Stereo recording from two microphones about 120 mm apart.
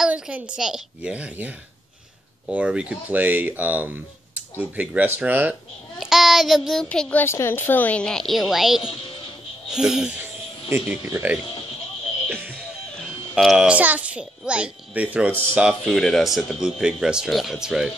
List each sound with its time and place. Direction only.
0.0 s speech: 10° right (ahead or behind)
5.9 s speech: 5° right (ahead or behind)
10.7 s speech: 15° right (ahead or behind)
12.9 s a child's voice: centre (ahead or behind)
16.0 s speech: centre (ahead or behind)